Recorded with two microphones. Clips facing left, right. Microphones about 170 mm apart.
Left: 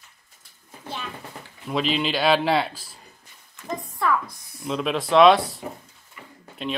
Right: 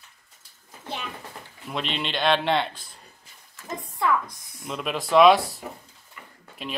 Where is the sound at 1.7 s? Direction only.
Centre (ahead or behind).